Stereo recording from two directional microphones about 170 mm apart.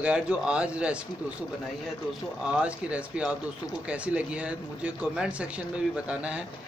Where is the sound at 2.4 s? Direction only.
5° right (ahead or behind).